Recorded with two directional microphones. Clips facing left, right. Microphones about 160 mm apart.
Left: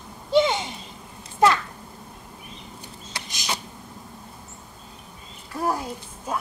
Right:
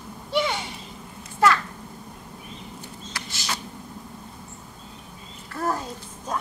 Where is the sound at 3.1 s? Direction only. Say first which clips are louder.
Left 2 dB; 20° left (ahead or behind).